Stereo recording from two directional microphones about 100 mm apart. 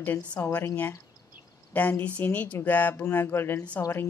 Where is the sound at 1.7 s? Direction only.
15° left (ahead or behind).